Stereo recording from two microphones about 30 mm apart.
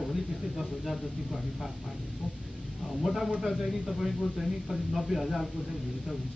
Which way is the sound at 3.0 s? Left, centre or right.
Centre.